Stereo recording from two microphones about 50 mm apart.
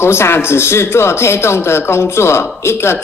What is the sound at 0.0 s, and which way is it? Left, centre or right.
A woman's voice, left.